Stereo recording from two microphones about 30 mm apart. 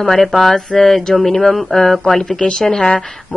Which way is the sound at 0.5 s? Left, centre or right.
Centre.